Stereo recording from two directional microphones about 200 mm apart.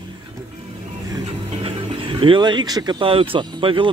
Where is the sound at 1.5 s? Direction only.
25° right (ahead or behind).